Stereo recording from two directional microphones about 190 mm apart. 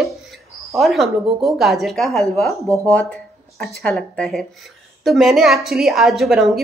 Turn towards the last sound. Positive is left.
turn(degrees=0)  # may be behind; listen again after turning